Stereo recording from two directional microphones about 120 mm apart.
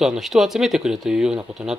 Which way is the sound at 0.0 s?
5° right (ahead or behind).